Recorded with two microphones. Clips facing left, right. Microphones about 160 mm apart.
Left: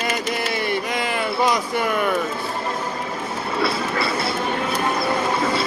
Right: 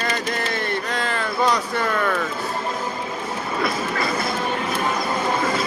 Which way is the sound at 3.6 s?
30° left (ahead or behind).